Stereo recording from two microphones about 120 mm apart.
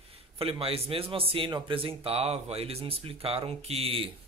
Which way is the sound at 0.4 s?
50° right (ahead or behind).